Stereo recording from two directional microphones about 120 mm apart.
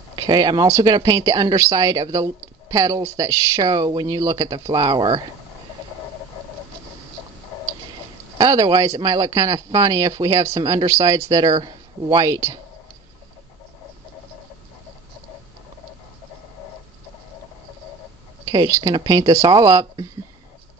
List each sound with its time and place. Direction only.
0.1 s speech: 35° right (ahead or behind)
3.6 s speech: 35° right (ahead or behind)
8.4 s speech: 30° right (ahead or behind)
18.4 s a sound: 40° right (ahead or behind)
18.7 s speech: 25° right (ahead or behind)